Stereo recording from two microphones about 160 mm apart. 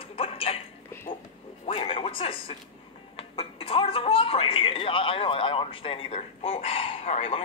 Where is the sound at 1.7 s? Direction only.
35° left (ahead or behind).